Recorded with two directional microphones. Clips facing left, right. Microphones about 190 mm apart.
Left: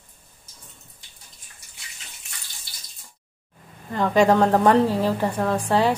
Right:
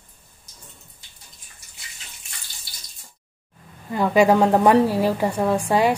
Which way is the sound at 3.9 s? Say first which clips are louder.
Right 1 dB; 10° right (ahead or behind).